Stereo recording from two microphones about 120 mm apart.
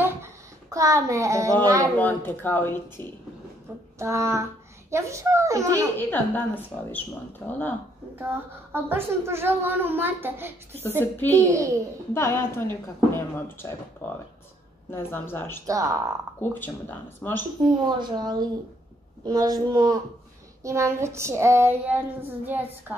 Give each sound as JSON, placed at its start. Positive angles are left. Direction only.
{"t": 0.0, "sound": "a sound", "side_deg": -25}
{"t": 2.0, "sound": "speech", "side_deg": 15}
{"t": 4.0, "sound": "a woman's voice", "side_deg": -25}
{"t": 5.9, "sound": "speech", "side_deg": 15}
{"t": 8.2, "sound": "a woman's voice", "side_deg": -20}
{"t": 11.0, "sound": "a woman's voice", "side_deg": 15}
{"t": 15.6, "sound": "a woman's voice", "side_deg": -30}
{"t": 16.3, "sound": "speech", "side_deg": 15}
{"t": 17.6, "sound": "a woman's voice", "side_deg": -35}